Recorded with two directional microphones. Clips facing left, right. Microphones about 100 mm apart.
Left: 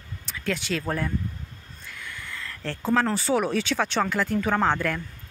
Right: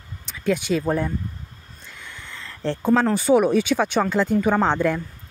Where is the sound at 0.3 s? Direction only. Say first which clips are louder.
Right 7 dB; 15° right (ahead or behind).